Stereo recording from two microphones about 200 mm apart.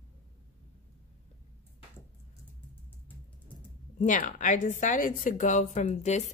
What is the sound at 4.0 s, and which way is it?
A woman's voice, 40° left (ahead or behind).